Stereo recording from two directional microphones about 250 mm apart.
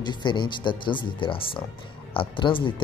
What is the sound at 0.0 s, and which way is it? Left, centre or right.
Speech, centre.